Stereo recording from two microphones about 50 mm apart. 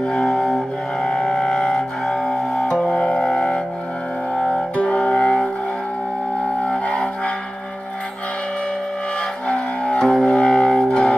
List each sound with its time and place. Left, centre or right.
0.0 s music: centre
6.6 s music: left
9.5 s music: left